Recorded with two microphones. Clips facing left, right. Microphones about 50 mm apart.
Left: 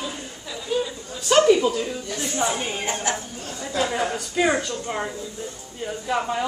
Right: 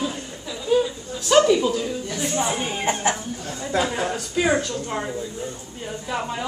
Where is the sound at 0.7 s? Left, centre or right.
Centre.